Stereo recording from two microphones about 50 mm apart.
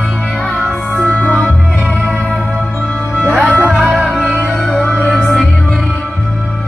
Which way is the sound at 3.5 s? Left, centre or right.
Right.